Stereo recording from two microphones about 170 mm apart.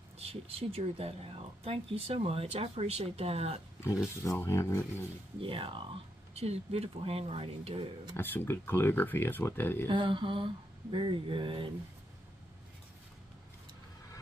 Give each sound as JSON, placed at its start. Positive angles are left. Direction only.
{"t": 0.3, "sound": "speech", "side_deg": -35}
{"t": 4.2, "sound": "speech", "side_deg": 15}
{"t": 5.4, "sound": "speech", "side_deg": -30}
{"t": 8.2, "sound": "speech", "side_deg": 10}
{"t": 9.8, "sound": "speech", "side_deg": -30}